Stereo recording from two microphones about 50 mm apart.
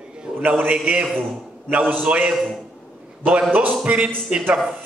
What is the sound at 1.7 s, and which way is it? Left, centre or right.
Speech, right.